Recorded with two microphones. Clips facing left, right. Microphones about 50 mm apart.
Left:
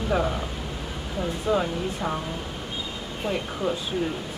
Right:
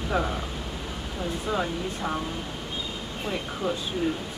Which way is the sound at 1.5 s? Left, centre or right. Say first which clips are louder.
Left 4 dB; centre.